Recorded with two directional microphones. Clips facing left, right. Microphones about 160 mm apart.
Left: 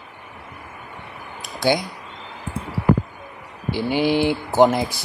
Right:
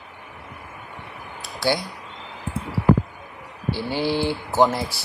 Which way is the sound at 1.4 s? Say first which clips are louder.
Left 3 dB; 20° left (ahead or behind).